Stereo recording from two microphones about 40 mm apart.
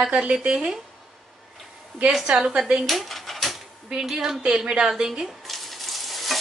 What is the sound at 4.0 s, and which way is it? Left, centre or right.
Speech, centre.